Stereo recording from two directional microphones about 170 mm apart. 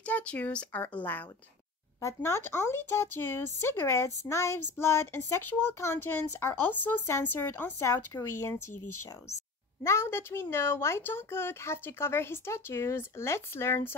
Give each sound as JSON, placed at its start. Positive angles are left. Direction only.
{"t": 0.0, "sound": "speech", "side_deg": 5}
{"t": 9.8, "sound": "speech", "side_deg": 15}